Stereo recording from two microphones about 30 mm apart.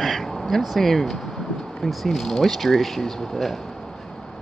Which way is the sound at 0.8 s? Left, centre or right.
Centre.